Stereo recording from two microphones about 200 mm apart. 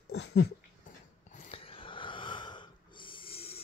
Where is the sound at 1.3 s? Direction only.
35° left (ahead or behind).